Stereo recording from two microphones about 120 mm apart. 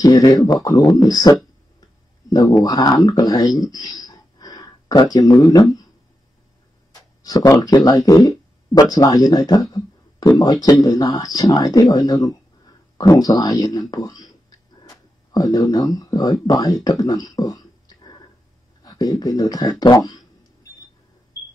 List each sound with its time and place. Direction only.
0.0 s speech: 30° left (ahead or behind)
6.9 s a sound: 30° left (ahead or behind)
8.9 s speech: 30° left (ahead or behind)